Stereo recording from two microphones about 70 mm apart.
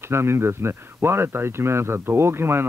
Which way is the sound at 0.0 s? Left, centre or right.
Right.